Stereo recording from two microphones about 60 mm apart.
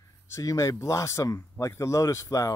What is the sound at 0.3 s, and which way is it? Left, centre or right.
Speech, left.